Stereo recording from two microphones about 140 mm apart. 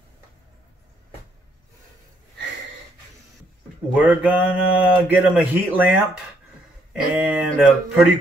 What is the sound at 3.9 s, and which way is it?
Speech, 10° right (ahead or behind).